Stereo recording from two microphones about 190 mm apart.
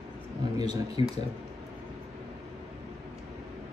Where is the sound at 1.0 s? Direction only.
30° left (ahead or behind).